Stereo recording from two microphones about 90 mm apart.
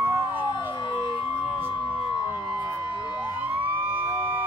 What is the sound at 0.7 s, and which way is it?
Siren, 60° left (ahead or behind).